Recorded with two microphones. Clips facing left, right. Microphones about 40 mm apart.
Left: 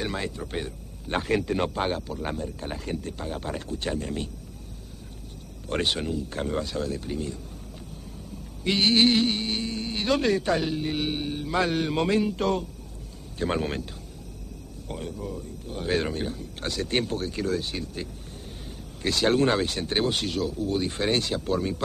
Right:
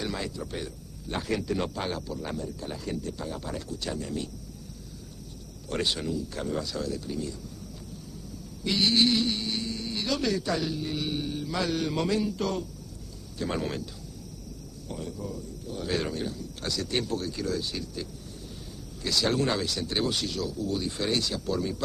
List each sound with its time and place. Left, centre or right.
0.0 s speech: left
5.7 s speech: left
8.6 s speech: left
14.9 s speech: left
19.0 s speech: left